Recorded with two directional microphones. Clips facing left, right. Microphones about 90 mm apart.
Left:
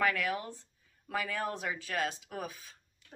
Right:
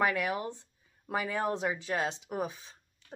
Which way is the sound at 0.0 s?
20° right (ahead or behind).